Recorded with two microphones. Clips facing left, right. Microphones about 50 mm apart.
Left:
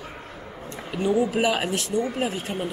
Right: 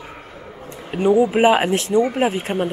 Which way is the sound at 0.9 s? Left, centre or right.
Right.